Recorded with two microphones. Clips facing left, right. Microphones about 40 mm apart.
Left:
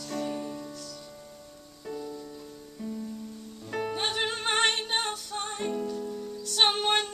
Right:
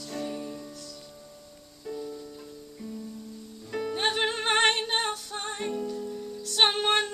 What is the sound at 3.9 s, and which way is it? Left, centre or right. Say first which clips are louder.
Music: right 5 dB; centre.